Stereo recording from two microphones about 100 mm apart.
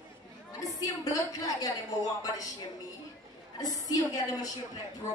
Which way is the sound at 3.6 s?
40° left (ahead or behind).